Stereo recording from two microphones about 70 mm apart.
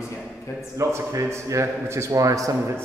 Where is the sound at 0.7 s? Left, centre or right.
Right.